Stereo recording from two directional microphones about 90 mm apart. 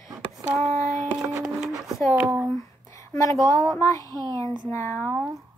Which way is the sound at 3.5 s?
35° left (ahead or behind).